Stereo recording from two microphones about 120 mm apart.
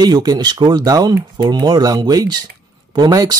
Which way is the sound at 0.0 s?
35° right (ahead or behind).